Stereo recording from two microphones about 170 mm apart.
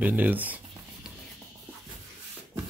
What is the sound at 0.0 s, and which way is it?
Speech, 10° right (ahead or behind).